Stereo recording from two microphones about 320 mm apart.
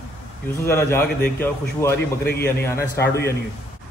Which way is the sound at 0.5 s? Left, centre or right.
Centre.